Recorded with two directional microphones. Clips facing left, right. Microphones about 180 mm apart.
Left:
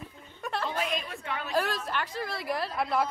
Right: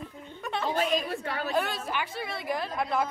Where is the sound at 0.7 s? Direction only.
35° right (ahead or behind).